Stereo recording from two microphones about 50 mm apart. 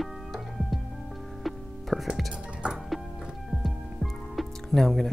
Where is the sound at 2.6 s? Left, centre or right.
Right.